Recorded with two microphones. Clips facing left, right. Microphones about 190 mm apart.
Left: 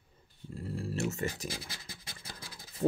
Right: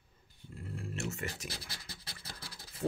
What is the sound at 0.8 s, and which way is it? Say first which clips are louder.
Speech: left 6 dB; 35° left (ahead or behind).